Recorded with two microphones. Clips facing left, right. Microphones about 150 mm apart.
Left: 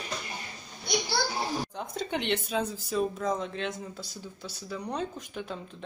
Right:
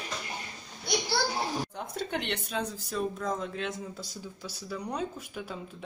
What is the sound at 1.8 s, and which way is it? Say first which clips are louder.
Speech: left 1 dB; centre (ahead or behind).